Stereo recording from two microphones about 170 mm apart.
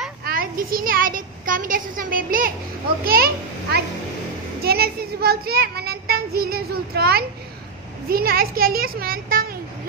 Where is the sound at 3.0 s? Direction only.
60° right (ahead or behind).